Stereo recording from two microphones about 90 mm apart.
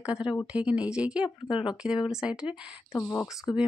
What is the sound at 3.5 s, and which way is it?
Speech, 70° left (ahead or behind).